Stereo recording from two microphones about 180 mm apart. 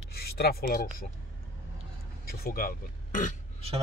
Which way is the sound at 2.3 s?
55° left (ahead or behind).